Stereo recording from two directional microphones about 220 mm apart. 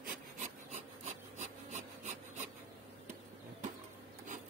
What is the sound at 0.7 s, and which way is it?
Rub, 30° right (ahead or behind).